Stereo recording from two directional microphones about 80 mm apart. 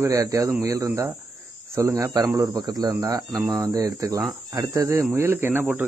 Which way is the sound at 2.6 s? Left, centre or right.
Right.